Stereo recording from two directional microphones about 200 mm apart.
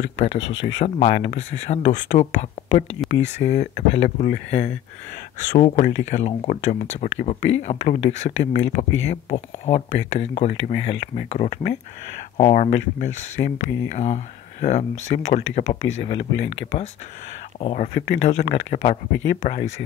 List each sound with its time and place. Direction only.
0.2 s speech: 30° left (ahead or behind)
5.5 s speech: 40° left (ahead or behind)
17.6 s speech: 30° left (ahead or behind)